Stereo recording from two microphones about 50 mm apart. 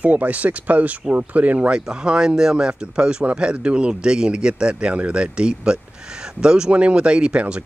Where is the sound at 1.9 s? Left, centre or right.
Centre.